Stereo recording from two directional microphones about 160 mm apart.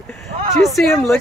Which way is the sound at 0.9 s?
15° left (ahead or behind).